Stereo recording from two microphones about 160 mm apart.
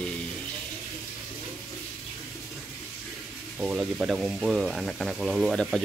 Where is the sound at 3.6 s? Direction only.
5° right (ahead or behind).